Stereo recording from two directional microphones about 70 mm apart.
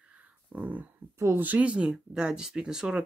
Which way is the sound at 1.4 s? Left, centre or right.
Right.